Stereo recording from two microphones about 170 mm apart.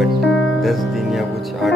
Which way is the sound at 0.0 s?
Centre (ahead or behind).